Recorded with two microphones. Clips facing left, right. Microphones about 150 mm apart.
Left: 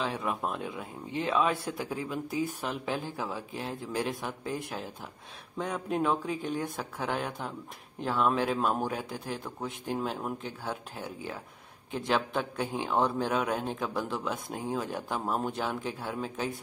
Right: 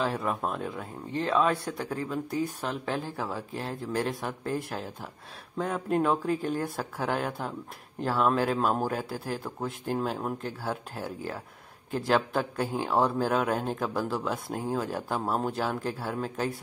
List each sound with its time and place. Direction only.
0.0 s a man's voice: centre (ahead or behind)